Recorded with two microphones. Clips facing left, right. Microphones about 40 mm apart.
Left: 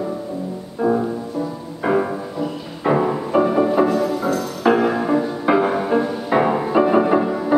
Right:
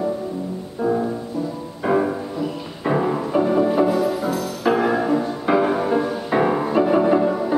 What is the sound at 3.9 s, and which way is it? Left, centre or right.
Music, centre.